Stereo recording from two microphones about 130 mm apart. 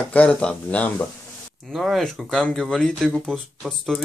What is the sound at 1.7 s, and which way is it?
Speech, centre (ahead or behind).